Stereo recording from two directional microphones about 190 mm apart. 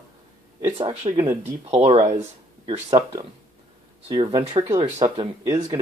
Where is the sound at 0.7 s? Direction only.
35° right (ahead or behind).